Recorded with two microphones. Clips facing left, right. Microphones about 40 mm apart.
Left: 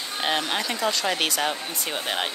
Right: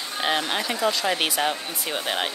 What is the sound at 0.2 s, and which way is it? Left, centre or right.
Speech, centre.